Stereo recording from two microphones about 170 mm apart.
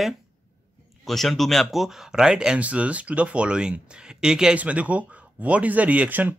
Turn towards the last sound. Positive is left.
turn(degrees=-10)  # may be behind; listen again after turning